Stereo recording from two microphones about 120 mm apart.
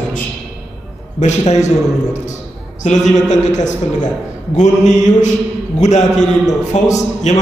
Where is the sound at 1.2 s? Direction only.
70° left (ahead or behind).